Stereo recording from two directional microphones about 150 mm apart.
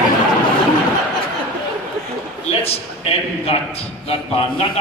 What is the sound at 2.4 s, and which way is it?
A man's voice, 40° left (ahead or behind).